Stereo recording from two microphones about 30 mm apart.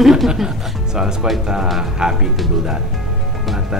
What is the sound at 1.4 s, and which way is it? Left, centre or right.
Speech, right.